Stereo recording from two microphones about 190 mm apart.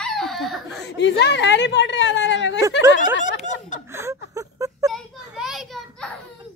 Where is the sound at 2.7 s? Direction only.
75° left (ahead or behind).